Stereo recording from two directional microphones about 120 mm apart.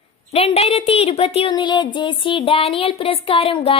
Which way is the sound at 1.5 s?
40° left (ahead or behind).